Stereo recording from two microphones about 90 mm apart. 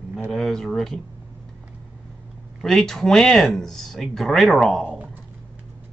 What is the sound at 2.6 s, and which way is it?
Speech, 5° left (ahead or behind).